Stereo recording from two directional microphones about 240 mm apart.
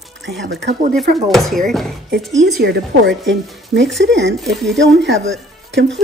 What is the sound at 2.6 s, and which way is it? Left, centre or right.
Speech, right.